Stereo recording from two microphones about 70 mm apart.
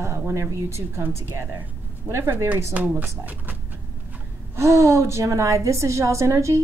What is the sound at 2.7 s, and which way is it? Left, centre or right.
Speech, right.